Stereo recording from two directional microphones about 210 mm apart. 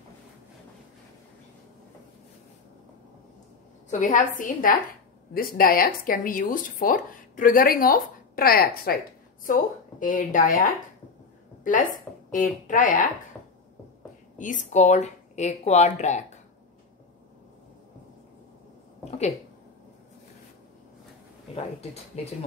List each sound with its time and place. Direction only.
3.9 s a woman's voice: 35° left (ahead or behind)
14.4 s speech: 35° left (ahead or behind)
19.0 s speech: 30° left (ahead or behind)